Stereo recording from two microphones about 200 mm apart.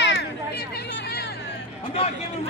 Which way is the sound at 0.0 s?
60° left (ahead or behind).